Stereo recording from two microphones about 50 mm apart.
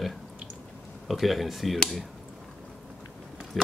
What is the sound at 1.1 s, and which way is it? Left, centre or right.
Speech, centre.